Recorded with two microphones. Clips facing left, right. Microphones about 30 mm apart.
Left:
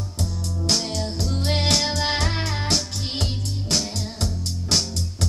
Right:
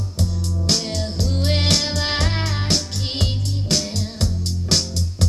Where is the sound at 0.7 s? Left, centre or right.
Right.